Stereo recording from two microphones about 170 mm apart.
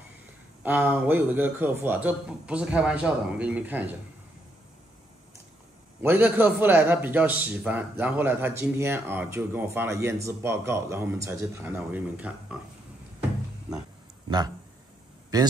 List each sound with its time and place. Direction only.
0.7 s a man's voice: 10° right (ahead or behind)
5.9 s a man's voice: 10° right (ahead or behind)
15.3 s speech: 25° right (ahead or behind)